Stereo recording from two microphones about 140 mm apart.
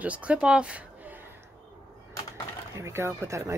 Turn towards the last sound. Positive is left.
turn(degrees=-20)  # may be behind; listen again after turning